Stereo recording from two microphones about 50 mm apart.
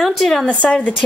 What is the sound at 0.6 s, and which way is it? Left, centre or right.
Speech, left.